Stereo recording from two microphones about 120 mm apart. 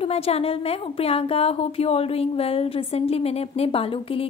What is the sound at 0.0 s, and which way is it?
A woman's voice, 55° left (ahead or behind).